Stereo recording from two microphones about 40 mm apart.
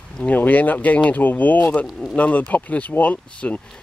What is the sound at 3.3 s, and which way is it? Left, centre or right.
Speech, left.